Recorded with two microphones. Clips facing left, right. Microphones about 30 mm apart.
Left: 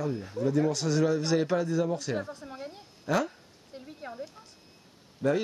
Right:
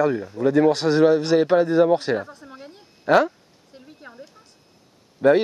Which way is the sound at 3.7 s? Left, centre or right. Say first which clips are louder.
Left 2 dB; centre.